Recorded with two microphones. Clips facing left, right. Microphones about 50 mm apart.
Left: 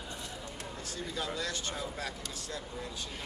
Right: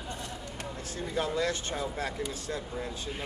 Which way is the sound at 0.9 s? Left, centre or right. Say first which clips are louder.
Right 6 dB; right.